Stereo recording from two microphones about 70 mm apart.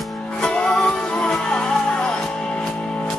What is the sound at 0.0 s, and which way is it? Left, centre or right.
Music, centre.